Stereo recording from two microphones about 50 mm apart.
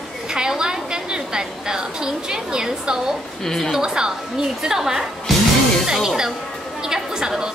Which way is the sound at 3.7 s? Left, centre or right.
Centre.